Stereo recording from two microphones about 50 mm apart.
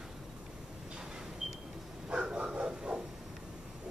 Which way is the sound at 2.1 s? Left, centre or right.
Centre.